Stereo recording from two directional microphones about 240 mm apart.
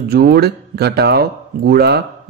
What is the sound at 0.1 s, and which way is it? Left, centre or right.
Speech, right.